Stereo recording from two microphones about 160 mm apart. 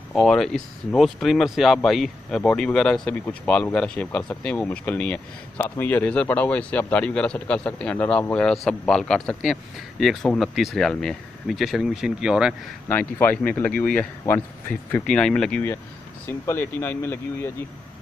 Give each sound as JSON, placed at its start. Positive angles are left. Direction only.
{"t": 0.1, "sound": "speech", "side_deg": 0}
{"t": 12.8, "sound": "speech", "side_deg": 10}